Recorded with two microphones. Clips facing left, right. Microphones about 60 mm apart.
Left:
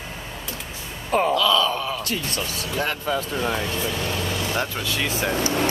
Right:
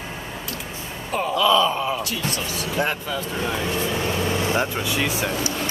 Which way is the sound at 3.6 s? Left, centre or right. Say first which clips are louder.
Right 2 dB; right.